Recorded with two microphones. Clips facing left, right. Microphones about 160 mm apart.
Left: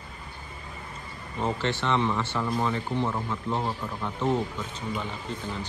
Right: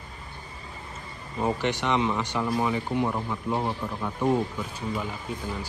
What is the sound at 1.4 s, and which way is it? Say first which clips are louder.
Speech: right 2 dB; 15° right (ahead or behind).